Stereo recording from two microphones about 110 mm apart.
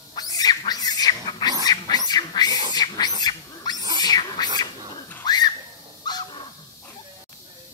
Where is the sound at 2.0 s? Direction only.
40° left (ahead or behind).